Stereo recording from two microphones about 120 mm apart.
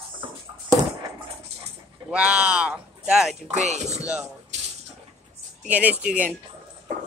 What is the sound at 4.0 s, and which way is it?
Speech, 10° right (ahead or behind).